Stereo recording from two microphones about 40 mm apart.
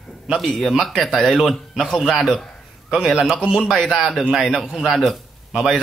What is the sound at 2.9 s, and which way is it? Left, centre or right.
Speech, centre.